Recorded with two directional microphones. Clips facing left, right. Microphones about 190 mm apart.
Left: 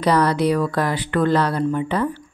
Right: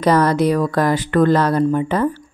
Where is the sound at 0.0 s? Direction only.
45° right (ahead or behind).